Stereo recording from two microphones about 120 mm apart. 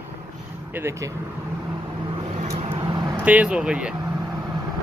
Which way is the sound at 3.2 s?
10° right (ahead or behind).